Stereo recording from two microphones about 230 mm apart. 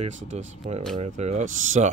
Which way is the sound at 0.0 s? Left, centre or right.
Right.